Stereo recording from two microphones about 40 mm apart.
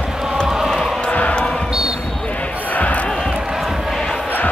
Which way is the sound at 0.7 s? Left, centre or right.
Centre.